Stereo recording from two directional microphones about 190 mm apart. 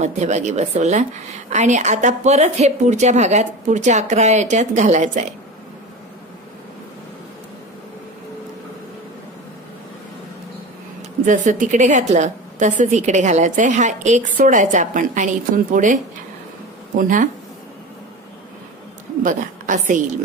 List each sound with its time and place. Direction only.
0.0 s a woman's voice: 35° right (ahead or behind)
11.2 s a woman's voice: 40° right (ahead or behind)
19.2 s a woman's voice: 45° right (ahead or behind)